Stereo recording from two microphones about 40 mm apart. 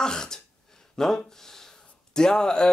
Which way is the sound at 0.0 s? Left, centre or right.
Centre.